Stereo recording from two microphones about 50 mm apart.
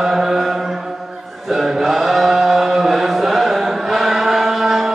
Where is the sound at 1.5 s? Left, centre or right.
Centre.